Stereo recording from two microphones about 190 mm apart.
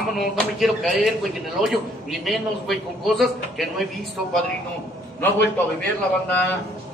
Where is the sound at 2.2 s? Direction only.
Centre (ahead or behind).